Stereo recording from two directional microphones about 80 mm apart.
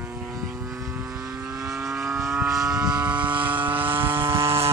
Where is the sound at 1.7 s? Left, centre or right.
Centre.